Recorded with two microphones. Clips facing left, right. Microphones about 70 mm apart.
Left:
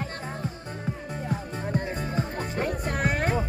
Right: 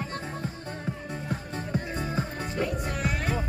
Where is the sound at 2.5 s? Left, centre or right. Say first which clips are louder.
Left 2 dB; left.